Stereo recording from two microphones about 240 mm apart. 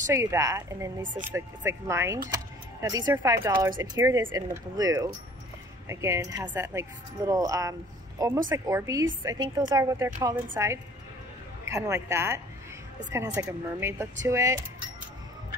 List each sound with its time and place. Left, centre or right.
0.0 s speech: centre
1.0 s speech: right
1.3 s speech: centre